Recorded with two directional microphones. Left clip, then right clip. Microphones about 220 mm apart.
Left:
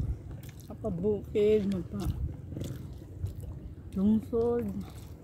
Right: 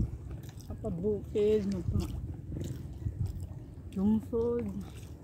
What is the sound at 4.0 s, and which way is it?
Speech, 20° left (ahead or behind).